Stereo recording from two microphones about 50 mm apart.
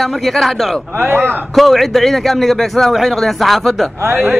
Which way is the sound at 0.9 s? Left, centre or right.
Right.